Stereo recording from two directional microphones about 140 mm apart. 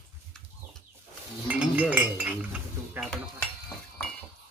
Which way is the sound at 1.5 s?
10° right (ahead or behind).